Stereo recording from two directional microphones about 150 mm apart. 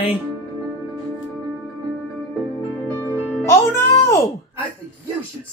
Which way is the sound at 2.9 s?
15° left (ahead or behind).